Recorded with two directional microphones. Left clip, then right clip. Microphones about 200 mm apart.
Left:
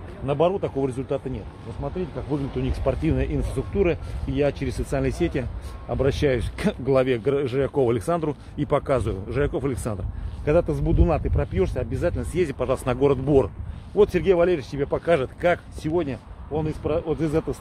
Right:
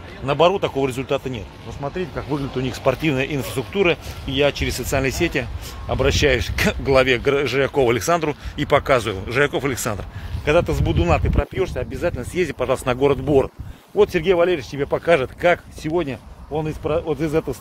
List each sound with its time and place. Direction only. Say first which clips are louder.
0.3 s speech: right 5 dB; 15° right (ahead or behind); by 14.9 s centre (ahead or behind)
14.9 s speech: right 5 dB; 10° right (ahead or behind)